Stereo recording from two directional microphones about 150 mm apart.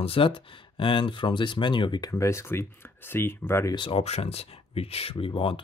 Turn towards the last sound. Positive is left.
turn(degrees=35)  # may be behind; listen again after turning